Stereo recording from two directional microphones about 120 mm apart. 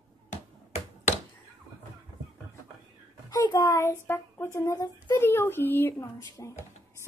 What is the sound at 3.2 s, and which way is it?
A child's voice, 30° left (ahead or behind).